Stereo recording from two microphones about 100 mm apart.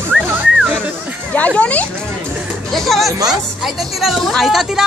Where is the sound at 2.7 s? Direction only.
Centre (ahead or behind).